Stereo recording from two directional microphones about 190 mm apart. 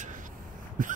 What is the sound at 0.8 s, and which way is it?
Throat clearing, 45° right (ahead or behind).